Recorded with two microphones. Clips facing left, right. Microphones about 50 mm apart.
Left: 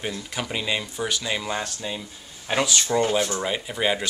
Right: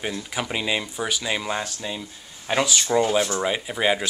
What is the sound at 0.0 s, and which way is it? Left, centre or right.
Speech, centre.